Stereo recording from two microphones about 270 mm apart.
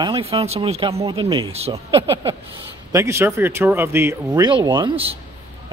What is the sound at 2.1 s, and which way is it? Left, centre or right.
Speech, centre.